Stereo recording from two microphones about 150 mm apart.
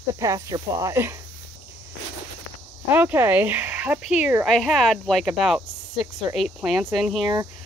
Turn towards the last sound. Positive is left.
turn(degrees=0)  # may be behind; listen again after turning